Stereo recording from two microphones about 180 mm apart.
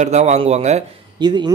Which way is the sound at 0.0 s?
40° right (ahead or behind).